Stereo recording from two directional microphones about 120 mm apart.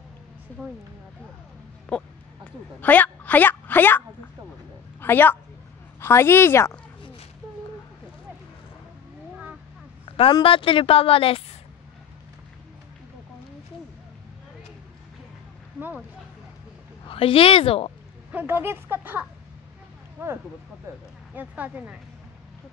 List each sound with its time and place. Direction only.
1.9 s speech: 10° left (ahead or behind)
5.0 s a woman's voice: 15° left (ahead or behind)
10.0 s a sound: 50° left (ahead or behind)
10.4 s a woman's voice: 45° left (ahead or behind)
17.1 s a woman's voice: 50° left (ahead or behind)
18.3 s speech: 15° right (ahead or behind)
20.9 s speech: 25° right (ahead or behind)
21.4 s speech: 15° right (ahead or behind)